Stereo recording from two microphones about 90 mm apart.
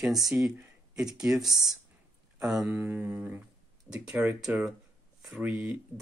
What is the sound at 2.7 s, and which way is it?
Mantra, 20° right (ahead or behind).